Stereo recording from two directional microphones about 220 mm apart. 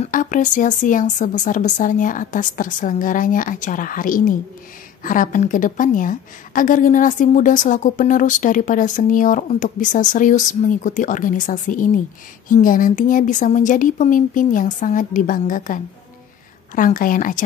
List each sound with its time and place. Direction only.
0.0 s a woman's voice: 35° left (ahead or behind)